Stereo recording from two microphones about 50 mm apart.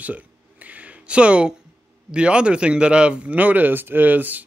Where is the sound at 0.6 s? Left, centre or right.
Right.